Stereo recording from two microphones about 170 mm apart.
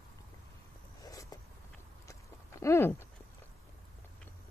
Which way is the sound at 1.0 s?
20° left (ahead or behind).